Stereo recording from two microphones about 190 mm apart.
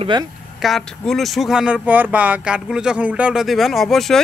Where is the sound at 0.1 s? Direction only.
25° right (ahead or behind).